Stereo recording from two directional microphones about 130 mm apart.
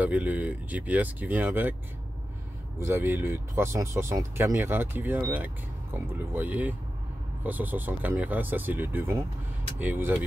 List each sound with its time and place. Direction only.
0.0 s speech: 10° right (ahead or behind)
2.8 s speech: 20° right (ahead or behind)